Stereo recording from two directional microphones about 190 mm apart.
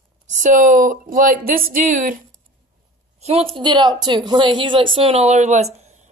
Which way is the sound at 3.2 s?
30° right (ahead or behind).